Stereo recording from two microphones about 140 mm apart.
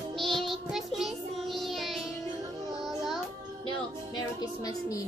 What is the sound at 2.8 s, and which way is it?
Music, centre (ahead or behind).